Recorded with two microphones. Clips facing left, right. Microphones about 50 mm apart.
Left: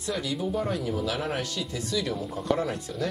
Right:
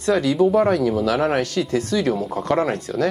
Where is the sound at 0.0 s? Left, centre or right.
Right.